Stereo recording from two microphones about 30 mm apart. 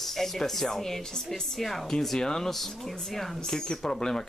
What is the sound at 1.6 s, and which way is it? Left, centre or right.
Speech, centre.